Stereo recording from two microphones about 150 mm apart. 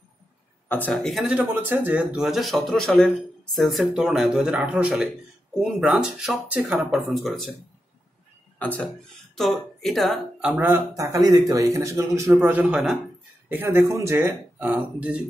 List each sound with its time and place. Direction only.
0.7 s speech: 10° left (ahead or behind)
8.5 s speech: 10° left (ahead or behind)
10.6 s speech: 20° right (ahead or behind)